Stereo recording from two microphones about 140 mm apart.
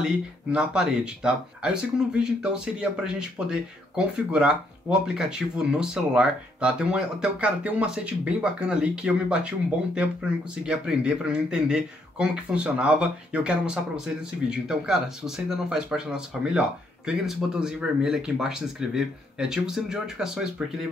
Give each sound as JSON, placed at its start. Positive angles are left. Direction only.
{"t": 0.0, "sound": "speech", "side_deg": -5}